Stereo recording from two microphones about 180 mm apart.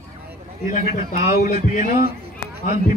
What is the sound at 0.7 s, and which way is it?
Speech, 40° left (ahead or behind).